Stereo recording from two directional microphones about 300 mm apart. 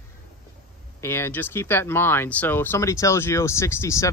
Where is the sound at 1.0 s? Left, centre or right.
Centre.